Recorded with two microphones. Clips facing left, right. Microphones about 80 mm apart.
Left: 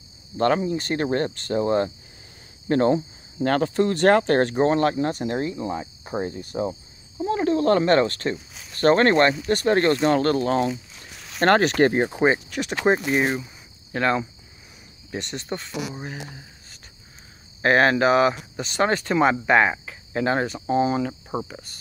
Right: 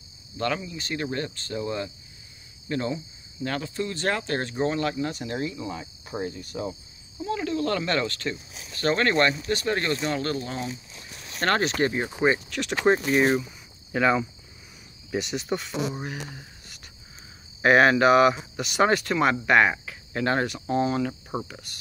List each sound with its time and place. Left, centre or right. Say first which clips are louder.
0.4 s speech: left 8 dB; left
11.3 s speech: left 6 dB; left
11.6 s speech: left 6 dB; left
12.1 s speech: left 3 dB; left
12.5 s speech: left 1 dB; centre
12.9 s speech: left 1 dB; left
13.9 s speech: even; centre
15.1 s cricket: right 3 dB; centre
16.0 s speech: even; centre
19.1 s cricket: left 4 dB; centre
20.6 s speech: left 5 dB; centre